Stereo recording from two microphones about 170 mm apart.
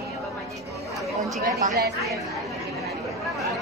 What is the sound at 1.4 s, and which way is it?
Speech, 65° right (ahead or behind).